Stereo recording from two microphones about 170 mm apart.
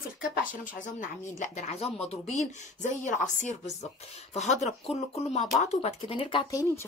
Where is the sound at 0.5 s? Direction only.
50° left (ahead or behind).